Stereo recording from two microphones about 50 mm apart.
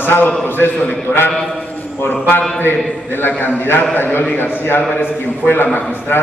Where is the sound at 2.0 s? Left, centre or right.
Left.